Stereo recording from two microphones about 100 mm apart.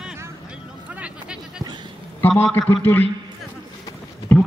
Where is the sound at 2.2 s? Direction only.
20° left (ahead or behind).